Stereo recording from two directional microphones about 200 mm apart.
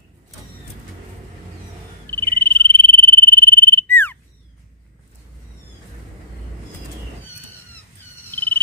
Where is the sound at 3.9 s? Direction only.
10° left (ahead or behind).